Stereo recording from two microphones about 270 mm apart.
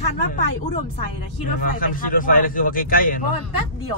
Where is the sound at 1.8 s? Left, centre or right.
Left.